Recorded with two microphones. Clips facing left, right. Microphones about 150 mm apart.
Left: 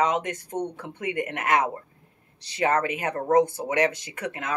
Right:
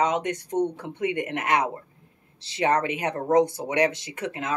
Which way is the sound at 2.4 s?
25° right (ahead or behind).